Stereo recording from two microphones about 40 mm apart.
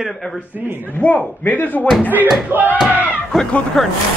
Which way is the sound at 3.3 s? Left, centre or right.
Centre.